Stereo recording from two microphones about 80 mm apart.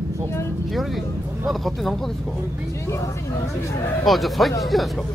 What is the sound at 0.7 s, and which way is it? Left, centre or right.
Speech, centre.